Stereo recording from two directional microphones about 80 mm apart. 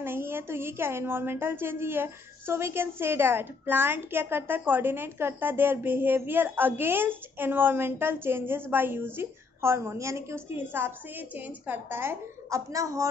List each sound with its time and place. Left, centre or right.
0.0 s a woman's voice: right